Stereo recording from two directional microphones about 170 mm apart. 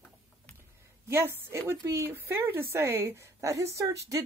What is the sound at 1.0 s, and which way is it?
A woman's voice, 15° right (ahead or behind).